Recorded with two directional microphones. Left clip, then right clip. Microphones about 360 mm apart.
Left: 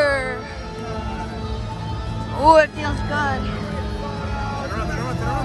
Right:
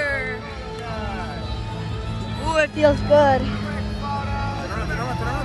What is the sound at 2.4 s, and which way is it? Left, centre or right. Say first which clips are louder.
Vehicle: left 8 dB; centre.